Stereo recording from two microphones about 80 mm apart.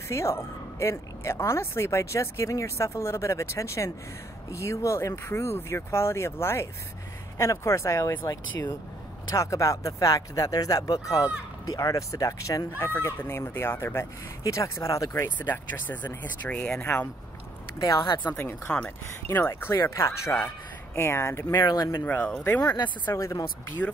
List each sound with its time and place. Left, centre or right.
0.1 s speech: left
8.3 s speech: left
15.3 s speech: left
16.4 s speech: centre
17.7 s speech: left
18.0 s speech: left
18.7 s speech: centre
19.3 s speech: left
20.0 s speech: left
22.0 s speech: left
22.6 s speech: left
23.1 s speech: left